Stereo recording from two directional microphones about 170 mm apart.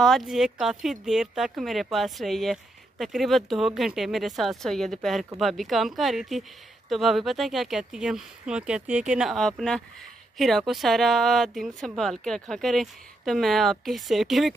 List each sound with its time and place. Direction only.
0.0 s speech: centre (ahead or behind)